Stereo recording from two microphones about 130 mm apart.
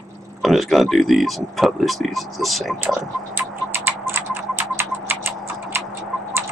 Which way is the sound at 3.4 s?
15° right (ahead or behind).